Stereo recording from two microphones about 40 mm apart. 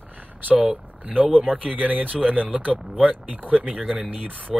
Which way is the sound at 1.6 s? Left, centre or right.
Right.